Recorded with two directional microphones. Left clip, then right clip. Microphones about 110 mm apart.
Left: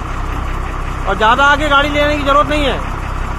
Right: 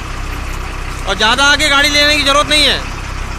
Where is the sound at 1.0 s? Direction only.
20° right (ahead or behind).